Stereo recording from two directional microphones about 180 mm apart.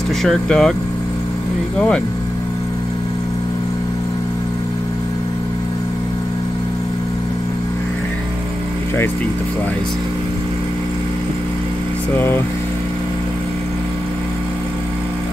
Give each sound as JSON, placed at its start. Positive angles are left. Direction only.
{"t": 0.2, "sound": "speech", "side_deg": 0}